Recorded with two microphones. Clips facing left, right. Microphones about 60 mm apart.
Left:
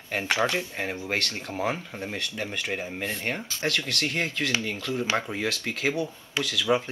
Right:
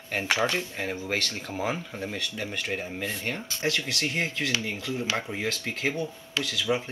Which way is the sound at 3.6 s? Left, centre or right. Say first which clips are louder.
Even; centre.